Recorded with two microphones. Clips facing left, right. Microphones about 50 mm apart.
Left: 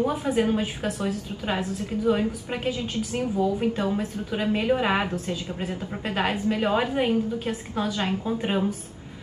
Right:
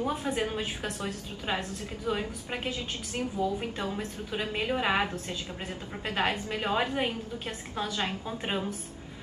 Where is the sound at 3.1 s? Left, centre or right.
Left.